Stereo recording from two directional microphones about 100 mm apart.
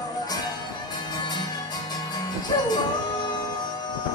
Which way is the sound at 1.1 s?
45° left (ahead or behind).